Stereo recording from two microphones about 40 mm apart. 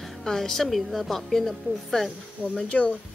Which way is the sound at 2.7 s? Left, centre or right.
Left.